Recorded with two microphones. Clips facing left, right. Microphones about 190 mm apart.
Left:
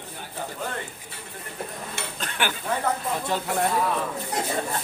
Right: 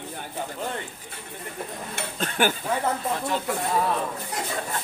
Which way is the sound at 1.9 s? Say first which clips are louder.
Right 5 dB; 45° right (ahead or behind).